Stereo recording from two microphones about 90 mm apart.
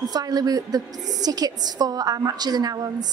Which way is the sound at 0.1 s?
45° right (ahead or behind).